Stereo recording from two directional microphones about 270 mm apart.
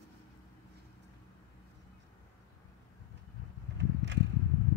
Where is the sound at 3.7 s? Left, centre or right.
Right.